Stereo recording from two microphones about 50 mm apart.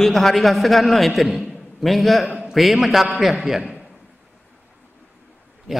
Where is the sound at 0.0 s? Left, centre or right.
Centre.